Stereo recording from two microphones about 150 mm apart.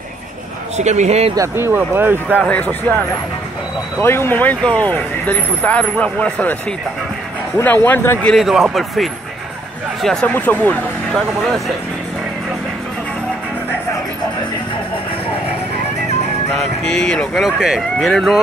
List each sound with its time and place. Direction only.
0.7 s speech: 50° right (ahead or behind)
1.3 s speech: 20° right (ahead or behind)
2.4 s speech: 10° left (ahead or behind)
4.0 s speech: 15° left (ahead or behind)
7.5 s speech: 15° left (ahead or behind)
8.3 s speech: centre (ahead or behind)
10.0 s speech: 10° left (ahead or behind)
16.5 s speech: 5° left (ahead or behind)